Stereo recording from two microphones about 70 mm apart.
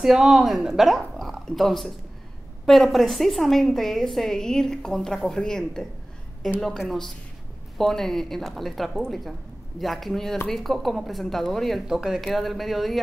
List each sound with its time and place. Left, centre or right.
0.0 s a woman's voice: centre
11.9 s a woman's voice: centre